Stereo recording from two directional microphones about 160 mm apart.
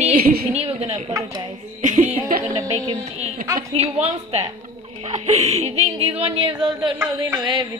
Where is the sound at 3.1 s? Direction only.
40° right (ahead or behind).